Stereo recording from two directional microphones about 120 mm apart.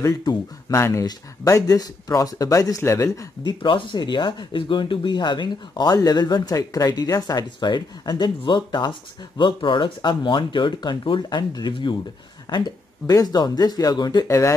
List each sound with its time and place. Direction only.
0.2 s speech: 35° left (ahead or behind)
0.7 s speech: 20° left (ahead or behind)
3.6 s speech: 40° left (ahead or behind)
14.2 s speech: 25° left (ahead or behind)